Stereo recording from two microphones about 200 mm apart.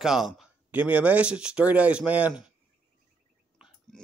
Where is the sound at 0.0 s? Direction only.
Centre (ahead or behind).